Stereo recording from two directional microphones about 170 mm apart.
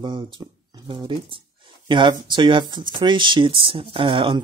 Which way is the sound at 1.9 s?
25° right (ahead or behind).